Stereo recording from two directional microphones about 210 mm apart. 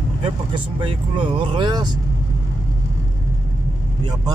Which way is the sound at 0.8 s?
25° right (ahead or behind).